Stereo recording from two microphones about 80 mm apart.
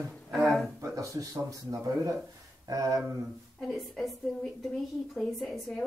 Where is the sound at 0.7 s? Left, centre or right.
Right.